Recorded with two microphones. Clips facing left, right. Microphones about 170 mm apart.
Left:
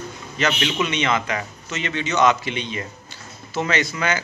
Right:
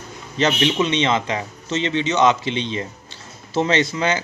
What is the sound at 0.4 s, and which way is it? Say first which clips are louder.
Speech: right 4 dB; 30° right (ahead or behind).